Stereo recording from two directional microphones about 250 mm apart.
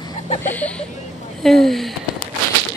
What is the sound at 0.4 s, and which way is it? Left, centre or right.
Speech, centre.